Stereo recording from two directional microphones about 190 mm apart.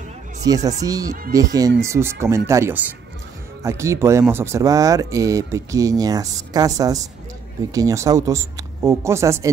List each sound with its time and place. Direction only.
0.5 s speech: 20° right (ahead or behind)